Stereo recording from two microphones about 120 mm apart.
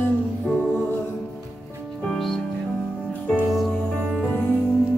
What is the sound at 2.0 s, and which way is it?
Music, 5° left (ahead or behind).